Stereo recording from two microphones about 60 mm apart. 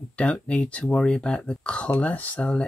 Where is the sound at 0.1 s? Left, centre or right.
Left.